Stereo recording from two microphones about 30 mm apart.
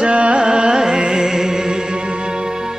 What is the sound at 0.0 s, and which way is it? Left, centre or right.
Carnatic music, right.